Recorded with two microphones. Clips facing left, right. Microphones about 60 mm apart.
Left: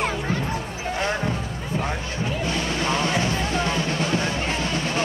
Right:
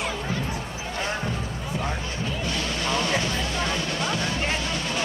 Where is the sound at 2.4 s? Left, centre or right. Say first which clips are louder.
Left 3 dB; left.